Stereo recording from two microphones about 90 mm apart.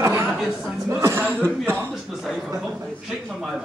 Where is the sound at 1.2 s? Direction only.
25° right (ahead or behind).